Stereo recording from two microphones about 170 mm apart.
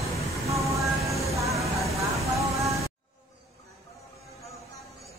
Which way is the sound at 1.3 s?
20° right (ahead or behind).